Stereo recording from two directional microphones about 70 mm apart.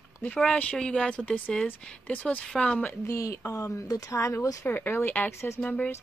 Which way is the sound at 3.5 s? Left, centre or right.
Left.